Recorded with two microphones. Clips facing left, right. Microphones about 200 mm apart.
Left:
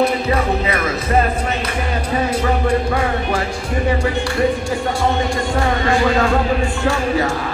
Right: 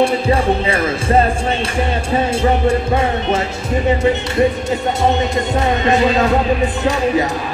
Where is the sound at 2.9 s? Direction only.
25° right (ahead or behind).